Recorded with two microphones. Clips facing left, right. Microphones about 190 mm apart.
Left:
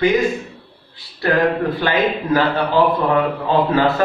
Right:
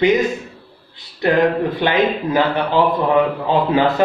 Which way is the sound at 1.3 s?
20° right (ahead or behind).